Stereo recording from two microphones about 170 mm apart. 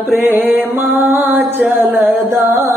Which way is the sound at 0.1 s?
10° right (ahead or behind).